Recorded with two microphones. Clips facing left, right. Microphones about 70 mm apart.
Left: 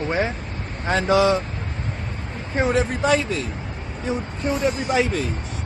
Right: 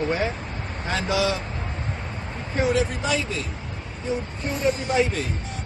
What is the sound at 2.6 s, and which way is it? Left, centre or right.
Speech, left.